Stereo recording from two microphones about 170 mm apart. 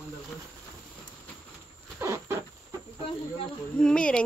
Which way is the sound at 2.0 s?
15° right (ahead or behind).